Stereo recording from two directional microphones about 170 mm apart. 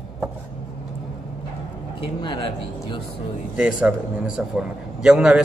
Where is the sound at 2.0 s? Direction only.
30° left (ahead or behind).